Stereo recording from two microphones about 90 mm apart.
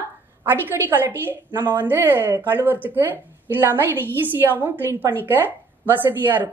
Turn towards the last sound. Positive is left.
turn(degrees=-20)  # may be behind; listen again after turning